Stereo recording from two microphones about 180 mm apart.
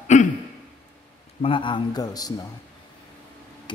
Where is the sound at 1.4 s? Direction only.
30° left (ahead or behind).